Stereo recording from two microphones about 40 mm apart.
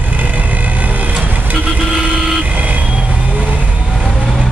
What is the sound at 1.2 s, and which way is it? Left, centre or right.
Vehicle, right.